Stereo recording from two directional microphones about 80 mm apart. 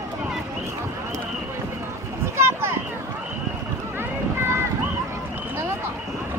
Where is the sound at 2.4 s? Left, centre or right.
Right.